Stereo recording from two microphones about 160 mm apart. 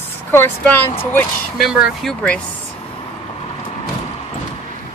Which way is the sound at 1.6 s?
5° right (ahead or behind).